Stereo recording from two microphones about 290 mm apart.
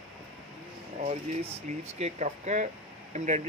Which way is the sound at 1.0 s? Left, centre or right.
Right.